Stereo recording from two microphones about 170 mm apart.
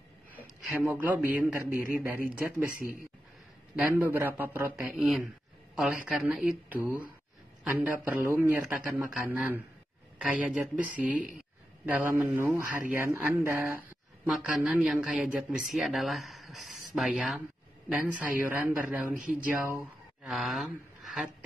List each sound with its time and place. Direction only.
0.6 s a man's voice: 5° right (ahead or behind)
2.8 s speech: 55° left (ahead or behind)
3.7 s a man's voice: 10° right (ahead or behind)